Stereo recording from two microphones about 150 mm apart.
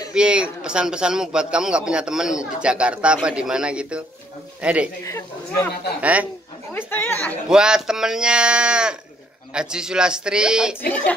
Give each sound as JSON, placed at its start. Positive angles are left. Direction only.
{"t": 0.1, "sound": "a man's voice", "side_deg": -5}
{"t": 5.0, "sound": "speech", "side_deg": 20}
{"t": 5.9, "sound": "a man's voice", "side_deg": -10}
{"t": 6.9, "sound": "speech", "side_deg": 15}
{"t": 7.4, "sound": "a man's voice", "side_deg": -5}